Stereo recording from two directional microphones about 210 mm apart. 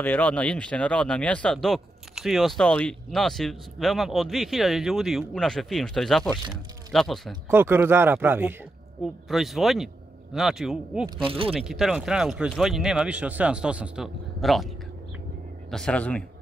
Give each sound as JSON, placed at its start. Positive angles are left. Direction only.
{"t": 0.0, "sound": "speech", "side_deg": 10}
{"t": 7.4, "sound": "speech", "side_deg": -10}
{"t": 11.2, "sound": "speech", "side_deg": -25}
{"t": 11.5, "sound": "speech", "side_deg": 0}
{"t": 15.7, "sound": "speech", "side_deg": 5}